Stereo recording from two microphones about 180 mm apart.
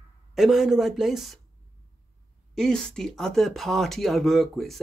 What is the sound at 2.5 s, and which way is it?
Speech, 5° left (ahead or behind).